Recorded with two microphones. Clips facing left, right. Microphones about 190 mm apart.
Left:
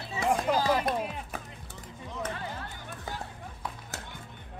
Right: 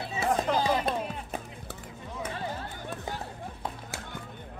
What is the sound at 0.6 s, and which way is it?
Music, 20° right (ahead or behind).